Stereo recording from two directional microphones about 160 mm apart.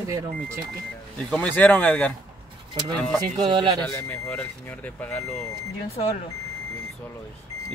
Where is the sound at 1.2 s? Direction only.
5° left (ahead or behind).